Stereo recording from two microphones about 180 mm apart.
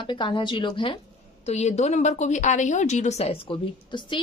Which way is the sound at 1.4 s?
40° left (ahead or behind).